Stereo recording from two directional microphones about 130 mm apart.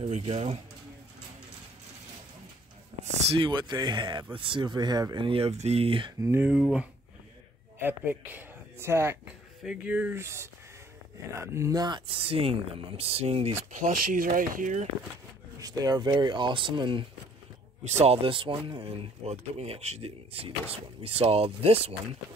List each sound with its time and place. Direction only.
0.0 s speech: 50° right (ahead or behind)
3.3 s speech: 35° right (ahead or behind)
6.2 s speech: 20° right (ahead or behind)
6.5 s speech: 5° right (ahead or behind)
9.2 s speech: 5° right (ahead or behind); by 12.0 s 30° right (ahead or behind)
12.1 s speech: 45° right (ahead or behind)
13.7 s speech: 80° right
15.6 s speech: 30° right (ahead or behind)
17.8 s speech: 55° right (ahead or behind)